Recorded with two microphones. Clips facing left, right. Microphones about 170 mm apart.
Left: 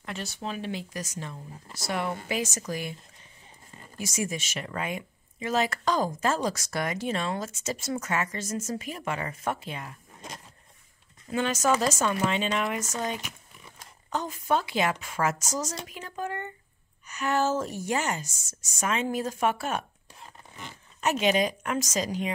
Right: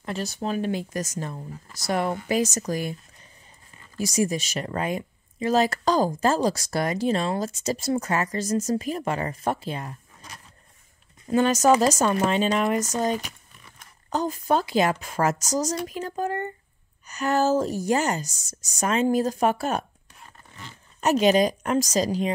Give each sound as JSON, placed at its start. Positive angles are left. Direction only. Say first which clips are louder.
{"t": 0.0, "sound": "speech", "louder": "right 6 dB", "side_deg": -40}
{"t": 4.0, "sound": "speech", "louder": "right 7 dB", "side_deg": -35}
{"t": 11.2, "sound": "speech", "louder": "right 7 dB", "side_deg": -40}
{"t": 21.0, "sound": "speech", "louder": "right 5 dB", "side_deg": -40}